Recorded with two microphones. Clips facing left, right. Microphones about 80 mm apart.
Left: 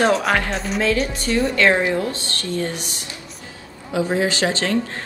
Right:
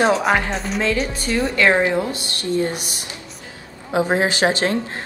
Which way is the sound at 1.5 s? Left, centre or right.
Centre.